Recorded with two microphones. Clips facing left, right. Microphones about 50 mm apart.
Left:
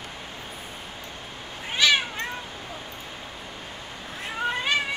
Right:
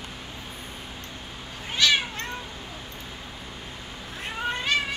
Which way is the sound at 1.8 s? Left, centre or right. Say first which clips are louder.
Left 1 dB; centre.